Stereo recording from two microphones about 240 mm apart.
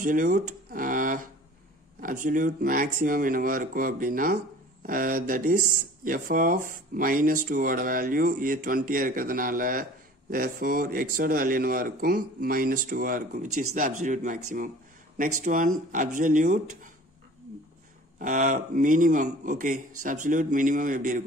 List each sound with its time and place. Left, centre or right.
0.0 s speech: right
15.4 s speech: right
18.2 s speech: right